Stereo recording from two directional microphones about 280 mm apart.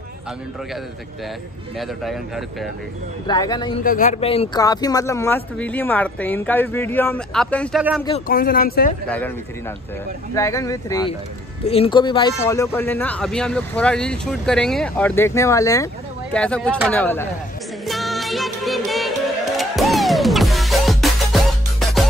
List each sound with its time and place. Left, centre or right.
1.8 s speech: centre
3.3 s speech: centre
3.8 s speech: left; by 7.8 s centre
8.3 s speech: left
10.3 s speech: centre
17.8 s music: centre